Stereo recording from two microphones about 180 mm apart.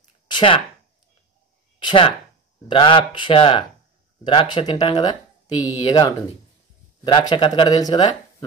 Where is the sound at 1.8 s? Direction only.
25° left (ahead or behind).